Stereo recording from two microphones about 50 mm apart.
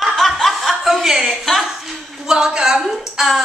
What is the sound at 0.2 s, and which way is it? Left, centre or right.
Chuckle, centre.